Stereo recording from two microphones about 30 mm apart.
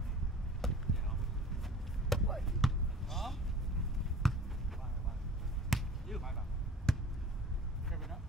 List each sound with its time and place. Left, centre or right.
0.6 s basketball bounce: centre
4.0 s a sound: centre
5.7 s basketball bounce: centre
6.9 s basketball bounce: centre